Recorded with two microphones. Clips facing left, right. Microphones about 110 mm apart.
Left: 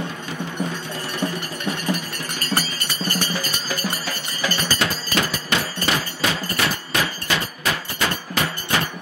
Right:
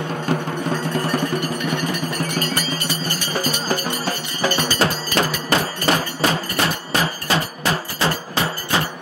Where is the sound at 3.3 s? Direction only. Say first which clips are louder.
Right 6 dB; 40° right (ahead or behind).